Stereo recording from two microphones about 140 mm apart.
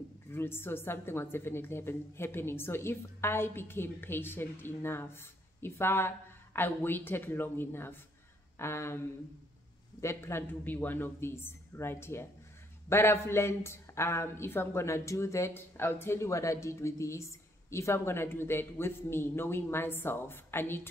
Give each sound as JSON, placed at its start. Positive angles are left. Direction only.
{"t": 0.3, "sound": "speech", "side_deg": 15}